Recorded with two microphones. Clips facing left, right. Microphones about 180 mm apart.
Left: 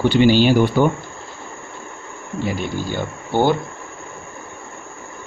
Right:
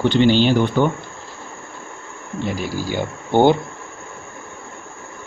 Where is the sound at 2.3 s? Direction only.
Centre (ahead or behind); by 3.5 s 20° right (ahead or behind).